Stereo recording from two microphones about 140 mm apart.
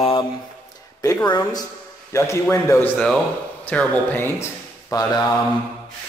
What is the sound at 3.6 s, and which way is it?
Speech, 10° left (ahead or behind).